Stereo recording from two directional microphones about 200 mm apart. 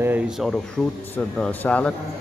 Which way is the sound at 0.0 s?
10° right (ahead or behind).